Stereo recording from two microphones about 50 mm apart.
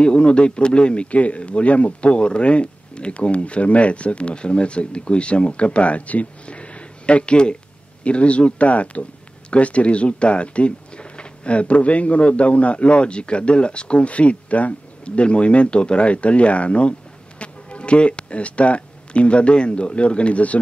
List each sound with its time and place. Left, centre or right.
0.0 s speech: left